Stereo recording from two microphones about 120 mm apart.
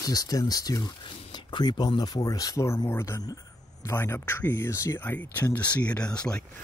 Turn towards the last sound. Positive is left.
turn(degrees=10)  # may be behind; listen again after turning